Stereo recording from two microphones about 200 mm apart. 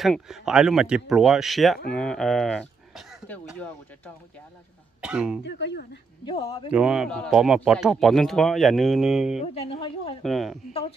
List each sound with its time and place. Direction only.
0.0 s speech: centre (ahead or behind)
5.0 s speech: 5° right (ahead or behind)
5.4 s speech: 60° left (ahead or behind)
6.2 s speech: 30° left (ahead or behind)
6.7 s speech: 5° right (ahead or behind)
9.4 s speech: 30° left (ahead or behind)
10.2 s speech: centre (ahead or behind)